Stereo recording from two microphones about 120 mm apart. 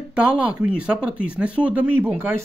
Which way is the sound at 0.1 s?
10° right (ahead or behind).